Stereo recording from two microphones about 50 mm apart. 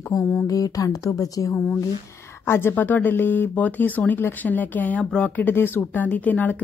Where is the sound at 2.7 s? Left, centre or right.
Left.